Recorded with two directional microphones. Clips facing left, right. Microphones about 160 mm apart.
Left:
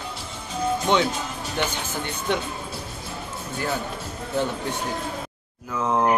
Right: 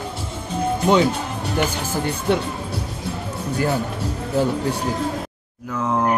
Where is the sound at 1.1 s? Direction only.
65° right (ahead or behind).